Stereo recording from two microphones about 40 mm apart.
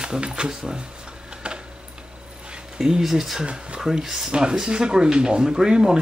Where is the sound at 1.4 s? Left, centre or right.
Right.